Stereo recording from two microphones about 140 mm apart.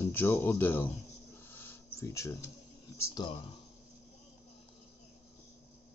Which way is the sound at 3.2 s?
30° left (ahead or behind).